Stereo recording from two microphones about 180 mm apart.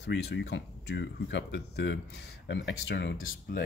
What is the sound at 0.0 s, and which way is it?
Speech, 75° left (ahead or behind).